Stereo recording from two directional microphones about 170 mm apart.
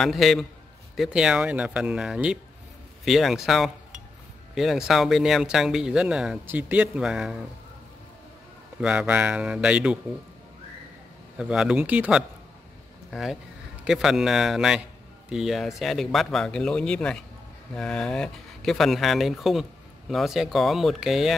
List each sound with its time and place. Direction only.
0.0 s speech: centre (ahead or behind)
8.8 s speech: 10° right (ahead or behind)
11.3 s speech: 5° right (ahead or behind)